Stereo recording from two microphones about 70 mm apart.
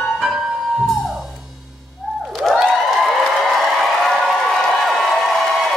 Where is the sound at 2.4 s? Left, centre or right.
Centre.